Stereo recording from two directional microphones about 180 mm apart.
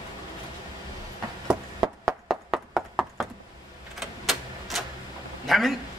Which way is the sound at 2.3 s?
Centre (ahead or behind).